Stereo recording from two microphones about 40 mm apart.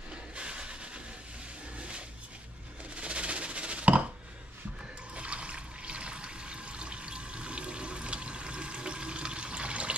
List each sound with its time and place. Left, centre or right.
0.4 s train: right
1.8 s a sound: right
5.1 s water: right